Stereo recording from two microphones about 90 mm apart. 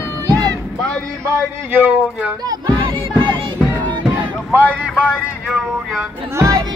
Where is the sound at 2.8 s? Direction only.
60° right (ahead or behind).